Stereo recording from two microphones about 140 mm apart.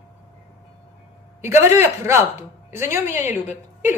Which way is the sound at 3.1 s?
60° left (ahead or behind).